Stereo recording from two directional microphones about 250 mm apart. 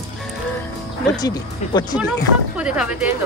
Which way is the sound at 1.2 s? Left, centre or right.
Centre.